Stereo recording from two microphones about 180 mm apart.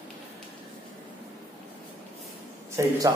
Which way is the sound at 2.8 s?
15° right (ahead or behind).